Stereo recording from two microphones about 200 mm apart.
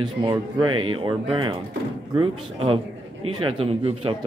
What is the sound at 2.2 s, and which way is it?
Speech, 25° right (ahead or behind).